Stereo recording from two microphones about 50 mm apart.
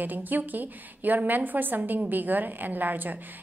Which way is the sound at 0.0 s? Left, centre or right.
Right.